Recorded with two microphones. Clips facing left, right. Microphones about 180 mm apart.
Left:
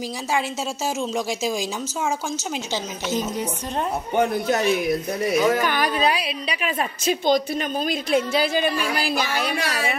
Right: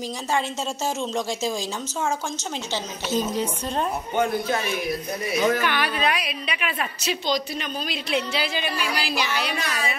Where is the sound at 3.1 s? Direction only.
15° left (ahead or behind).